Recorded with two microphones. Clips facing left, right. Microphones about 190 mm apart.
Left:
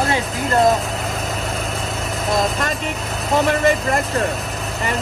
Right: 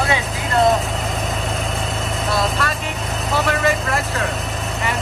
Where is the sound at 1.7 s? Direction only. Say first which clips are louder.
Right 1 dB; centre (ahead or behind).